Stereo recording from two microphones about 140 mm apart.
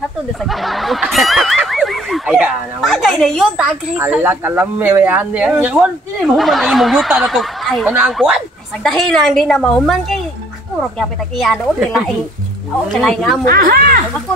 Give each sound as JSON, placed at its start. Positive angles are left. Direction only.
{"t": 0.5, "sound": "snicker", "side_deg": 0}
{"t": 4.2, "sound": "speech", "side_deg": -15}
{"t": 8.8, "sound": "speech", "side_deg": 5}
{"t": 13.5, "sound": "speech", "side_deg": -90}